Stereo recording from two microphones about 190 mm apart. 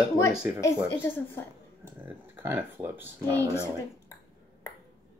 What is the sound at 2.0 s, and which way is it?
Speech, 10° right (ahead or behind).